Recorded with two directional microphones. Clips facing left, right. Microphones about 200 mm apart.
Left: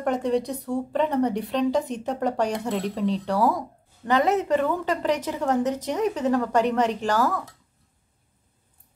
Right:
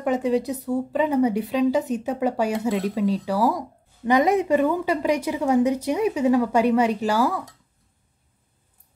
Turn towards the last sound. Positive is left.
turn(degrees=-10)  # may be behind; listen again after turning